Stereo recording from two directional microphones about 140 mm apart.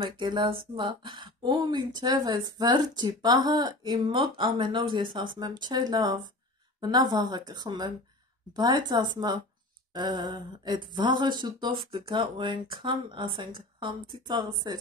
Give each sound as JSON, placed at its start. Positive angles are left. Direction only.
{"t": 0.0, "sound": "speech", "side_deg": -35}